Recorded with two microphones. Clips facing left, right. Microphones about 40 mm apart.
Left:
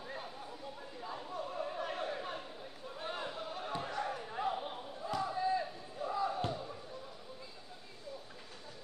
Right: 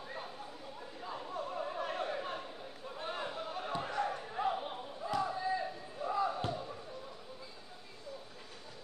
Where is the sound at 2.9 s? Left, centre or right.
Centre.